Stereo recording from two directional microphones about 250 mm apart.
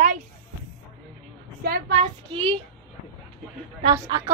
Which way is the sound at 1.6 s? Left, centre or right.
Right.